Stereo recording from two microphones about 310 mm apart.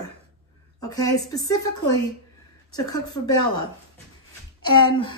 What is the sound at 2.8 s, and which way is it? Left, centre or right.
Speech, centre.